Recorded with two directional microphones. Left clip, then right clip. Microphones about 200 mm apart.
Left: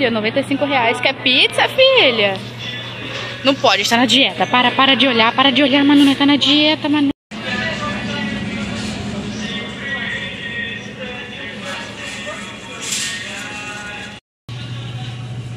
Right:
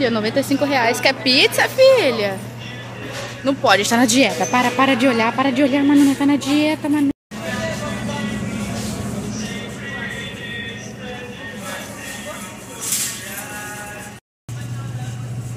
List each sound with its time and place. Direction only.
0.0 s a woman's voice: 20° right (ahead or behind)
1.4 s speech: 10° right (ahead or behind)
3.4 s speech: 10° right (ahead or behind)
4.2 s speech: 10° right (ahead or behind)